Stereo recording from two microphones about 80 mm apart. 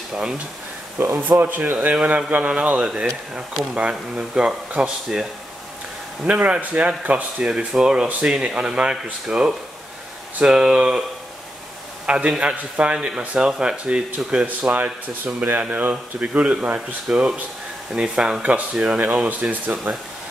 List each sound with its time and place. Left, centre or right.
0.1 s a man's voice: centre
1.0 s a man's voice: right; by 5.2 s centre
6.2 s a man's voice: centre
7.4 s a man's voice: centre
12.1 s a man's voice: centre